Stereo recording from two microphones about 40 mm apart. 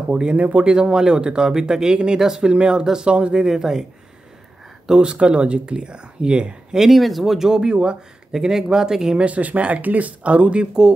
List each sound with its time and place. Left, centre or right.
0.1 s speech: right
0.7 s speech: right
2.5 s speech: right
3.4 s speech: centre
4.8 s speech: centre
5.1 s speech: right
6.8 s speech: centre
7.4 s speech: centre
8.3 s speech: centre
9.2 s speech: right